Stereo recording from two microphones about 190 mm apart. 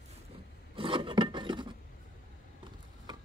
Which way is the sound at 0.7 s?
25° right (ahead or behind).